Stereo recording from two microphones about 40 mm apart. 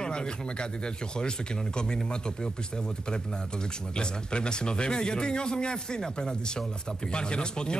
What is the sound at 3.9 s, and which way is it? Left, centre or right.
A man's voice, left.